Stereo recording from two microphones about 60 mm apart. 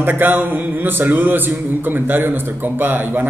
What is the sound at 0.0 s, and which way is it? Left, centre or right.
A man's voice, right.